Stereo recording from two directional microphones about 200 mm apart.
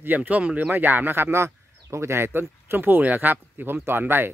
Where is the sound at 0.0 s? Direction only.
10° right (ahead or behind).